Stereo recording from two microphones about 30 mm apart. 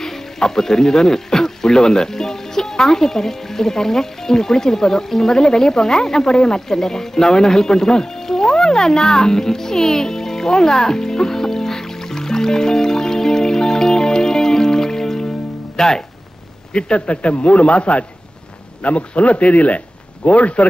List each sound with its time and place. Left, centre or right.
0.0 s speech: centre
15.7 s music: centre
16.7 s a man's voice: left